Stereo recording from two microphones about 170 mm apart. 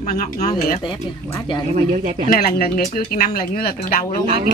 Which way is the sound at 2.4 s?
60° left (ahead or behind).